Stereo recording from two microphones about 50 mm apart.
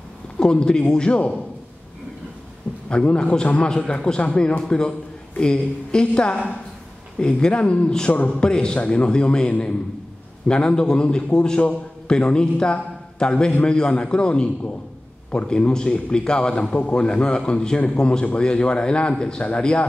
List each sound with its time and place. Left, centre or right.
0.4 s a man's voice: centre
2.9 s a man's voice: centre